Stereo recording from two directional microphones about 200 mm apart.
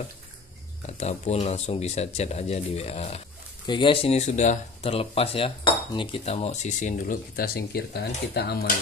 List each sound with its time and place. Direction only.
0.8 s speech: 35° left (ahead or behind); by 8.7 s 50° left (ahead or behind)